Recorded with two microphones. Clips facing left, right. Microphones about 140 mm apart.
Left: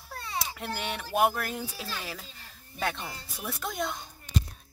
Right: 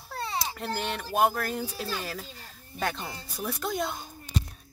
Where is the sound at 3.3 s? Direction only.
Centre (ahead or behind).